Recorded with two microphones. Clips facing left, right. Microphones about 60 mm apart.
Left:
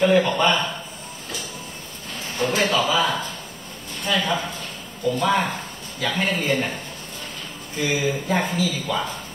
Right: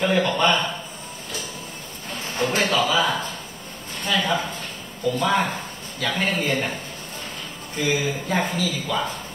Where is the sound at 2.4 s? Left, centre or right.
Centre.